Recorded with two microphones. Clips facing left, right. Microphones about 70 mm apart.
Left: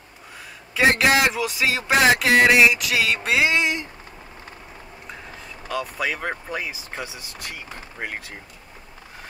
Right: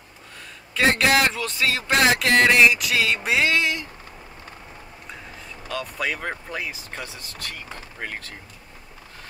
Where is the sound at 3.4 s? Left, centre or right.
Left.